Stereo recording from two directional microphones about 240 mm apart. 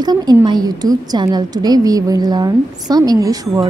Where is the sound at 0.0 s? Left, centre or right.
Centre.